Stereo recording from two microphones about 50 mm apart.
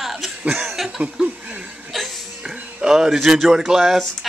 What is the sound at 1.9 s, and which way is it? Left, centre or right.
Hiccup, centre.